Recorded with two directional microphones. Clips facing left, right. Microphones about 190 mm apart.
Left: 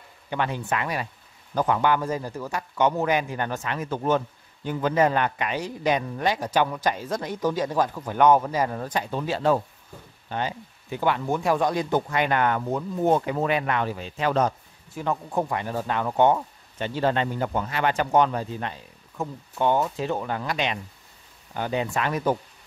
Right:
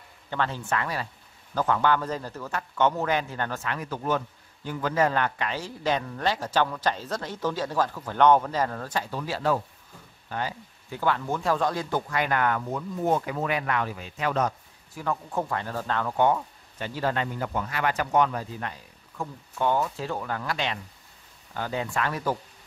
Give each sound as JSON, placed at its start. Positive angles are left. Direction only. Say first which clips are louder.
{"t": 0.3, "sound": "speech", "louder": "left 2 dB", "side_deg": 15}
{"t": 15.0, "sound": "speech", "louder": "left 3 dB", "side_deg": 20}